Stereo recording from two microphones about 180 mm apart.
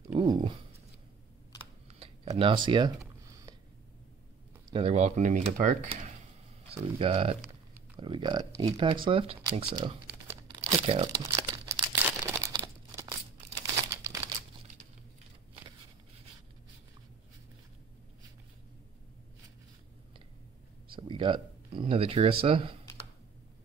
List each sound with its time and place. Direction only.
0.2 s speech: 25° right (ahead or behind)
1.9 s tick-tock: 35° right (ahead or behind)
2.3 s speech: 30° right (ahead or behind)
4.7 s speech: 35° right (ahead or behind)
6.7 s speech: 30° right (ahead or behind)
7.4 s a sound: 10° right (ahead or behind)
8.0 s speech: 25° right (ahead or behind)
10.6 s crumpling: 30° right (ahead or behind)
11.1 s crumpling: 15° right (ahead or behind)
20.9 s speech: 25° right (ahead or behind)